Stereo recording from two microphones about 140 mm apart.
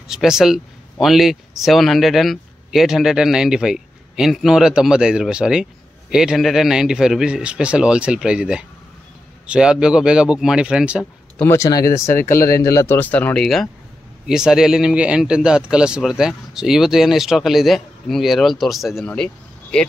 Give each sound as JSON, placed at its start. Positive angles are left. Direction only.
{"t": 0.1, "sound": "speech", "side_deg": -5}
{"t": 11.3, "sound": "speech", "side_deg": 20}